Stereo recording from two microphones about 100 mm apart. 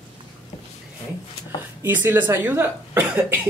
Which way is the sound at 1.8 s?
20° right (ahead or behind).